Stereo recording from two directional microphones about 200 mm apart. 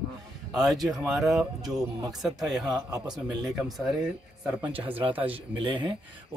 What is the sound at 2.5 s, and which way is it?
Speech, centre (ahead or behind).